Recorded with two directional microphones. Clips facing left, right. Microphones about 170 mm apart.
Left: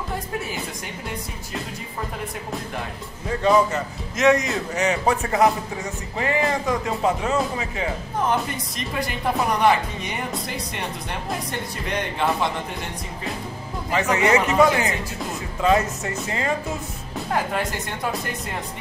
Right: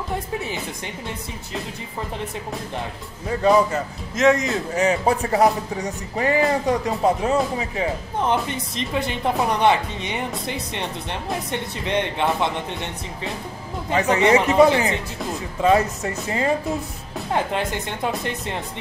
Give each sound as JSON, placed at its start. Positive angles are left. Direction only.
{"t": 4.2, "sound": "a man's voice", "side_deg": -30}
{"t": 11.5, "sound": "a man's voice", "side_deg": -25}
{"t": 17.3, "sound": "speech", "side_deg": -25}